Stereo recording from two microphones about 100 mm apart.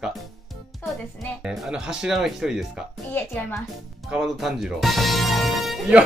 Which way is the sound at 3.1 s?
20° left (ahead or behind).